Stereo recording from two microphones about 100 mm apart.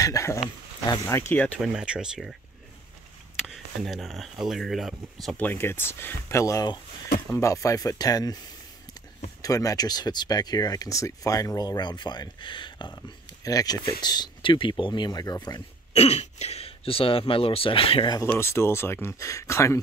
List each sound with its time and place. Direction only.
0.0 s speech: 30° left (ahead or behind)
1.6 s speech: 10° right (ahead or behind)
3.4 s speech: centre (ahead or behind)
5.4 s speech: 20° left (ahead or behind); by 15.6 s 40° left (ahead or behind)
15.9 s speech: 90° left; by 18.1 s 65° left (ahead or behind)
18.4 s speech: 25° left (ahead or behind)